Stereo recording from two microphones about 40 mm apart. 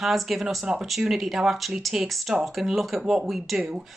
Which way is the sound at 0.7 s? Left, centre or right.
Centre.